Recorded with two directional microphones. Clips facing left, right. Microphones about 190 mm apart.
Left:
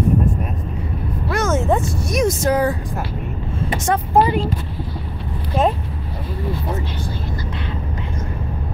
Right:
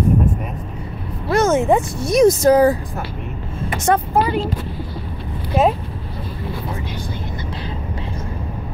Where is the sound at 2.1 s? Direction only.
35° right (ahead or behind).